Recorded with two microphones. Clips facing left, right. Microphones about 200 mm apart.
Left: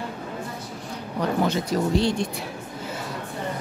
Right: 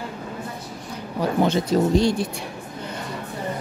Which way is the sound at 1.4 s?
25° right (ahead or behind).